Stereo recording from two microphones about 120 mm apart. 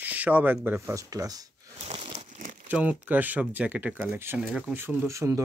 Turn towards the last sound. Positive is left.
turn(degrees=-25)  # may be behind; listen again after turning